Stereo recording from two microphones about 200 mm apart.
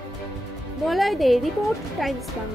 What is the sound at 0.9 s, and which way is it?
Speech, centre (ahead or behind).